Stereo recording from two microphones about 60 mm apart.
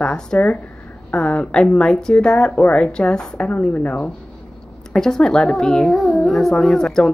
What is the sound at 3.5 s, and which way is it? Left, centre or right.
Speech, left.